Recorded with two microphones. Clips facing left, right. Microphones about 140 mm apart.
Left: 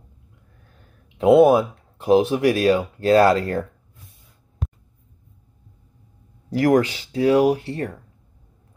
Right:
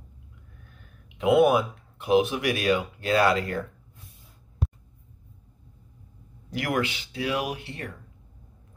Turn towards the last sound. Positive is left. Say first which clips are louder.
# left 11 dB
turn(degrees=40)  # may be behind; listen again after turning